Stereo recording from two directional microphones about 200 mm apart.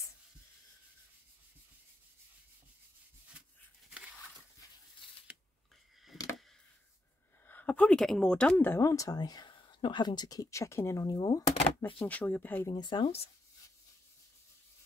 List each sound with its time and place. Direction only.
7.4 s speech: 10° left (ahead or behind)
12.0 s speech: 5° left (ahead or behind)
12.7 s speech: 20° left (ahead or behind)